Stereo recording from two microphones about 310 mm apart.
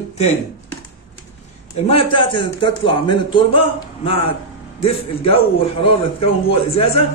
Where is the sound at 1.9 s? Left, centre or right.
Centre.